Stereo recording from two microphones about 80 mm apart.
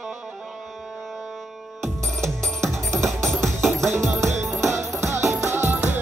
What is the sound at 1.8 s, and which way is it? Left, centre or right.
Music, centre.